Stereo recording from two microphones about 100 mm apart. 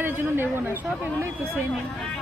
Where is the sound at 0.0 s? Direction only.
20° right (ahead or behind).